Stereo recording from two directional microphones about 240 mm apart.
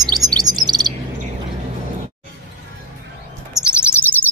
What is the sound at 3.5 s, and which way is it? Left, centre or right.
Chirp, centre.